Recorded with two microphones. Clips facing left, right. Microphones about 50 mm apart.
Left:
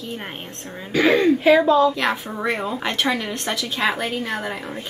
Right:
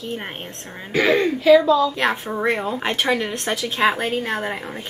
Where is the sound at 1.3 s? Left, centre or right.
Left.